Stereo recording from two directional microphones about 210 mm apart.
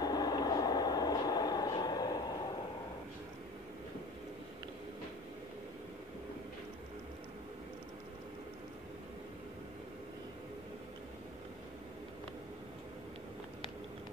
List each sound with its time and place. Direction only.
0.0 s vehicle: 20° left (ahead or behind)